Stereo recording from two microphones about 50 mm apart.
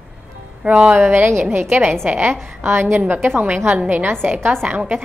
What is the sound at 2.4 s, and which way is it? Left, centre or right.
A woman's voice, right.